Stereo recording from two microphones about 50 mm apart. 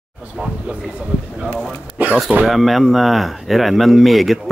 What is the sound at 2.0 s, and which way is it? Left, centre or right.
Speech, right.